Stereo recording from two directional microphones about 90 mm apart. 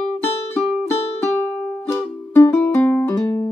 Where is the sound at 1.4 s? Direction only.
25° left (ahead or behind).